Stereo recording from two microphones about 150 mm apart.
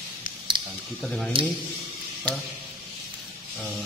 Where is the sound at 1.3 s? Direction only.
35° right (ahead or behind).